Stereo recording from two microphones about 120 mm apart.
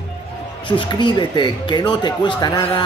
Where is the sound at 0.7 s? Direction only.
40° left (ahead or behind).